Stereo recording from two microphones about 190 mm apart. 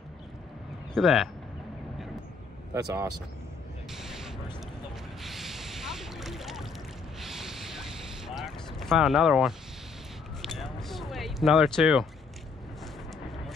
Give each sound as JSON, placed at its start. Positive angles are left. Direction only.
{"t": 0.9, "sound": "speech", "side_deg": 0}
{"t": 2.7, "sound": "speech", "side_deg": -15}
{"t": 3.9, "sound": "a sound", "side_deg": 0}